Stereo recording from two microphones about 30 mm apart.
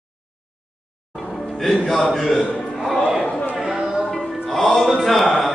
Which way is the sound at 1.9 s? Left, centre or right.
Centre.